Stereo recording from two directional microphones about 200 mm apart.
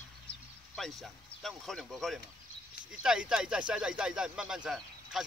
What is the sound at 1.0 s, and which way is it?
Speech, centre (ahead or behind).